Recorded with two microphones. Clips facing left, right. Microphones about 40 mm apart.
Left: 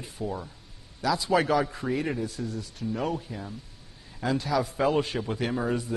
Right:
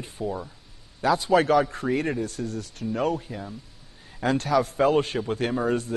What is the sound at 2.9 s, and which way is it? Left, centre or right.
Speech, centre.